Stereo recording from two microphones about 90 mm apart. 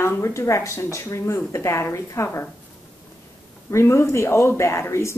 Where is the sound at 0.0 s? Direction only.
30° left (ahead or behind).